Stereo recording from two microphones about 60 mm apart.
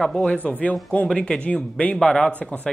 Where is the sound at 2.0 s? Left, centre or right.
Centre.